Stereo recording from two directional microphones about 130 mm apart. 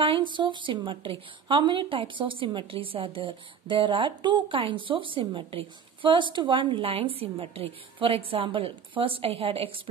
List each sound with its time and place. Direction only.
0.0 s a woman's voice: 40° right (ahead or behind)